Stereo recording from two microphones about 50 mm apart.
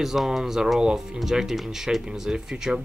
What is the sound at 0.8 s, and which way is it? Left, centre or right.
Speech, centre.